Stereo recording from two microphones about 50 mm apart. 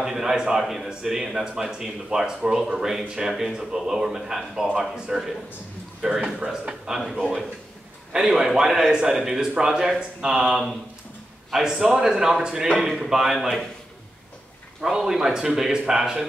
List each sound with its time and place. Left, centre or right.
0.0 s a man's voice: centre
8.1 s a man's voice: centre
14.8 s a man's voice: centre